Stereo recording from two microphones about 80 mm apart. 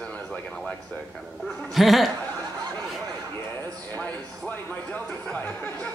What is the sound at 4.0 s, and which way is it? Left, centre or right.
Speech, left.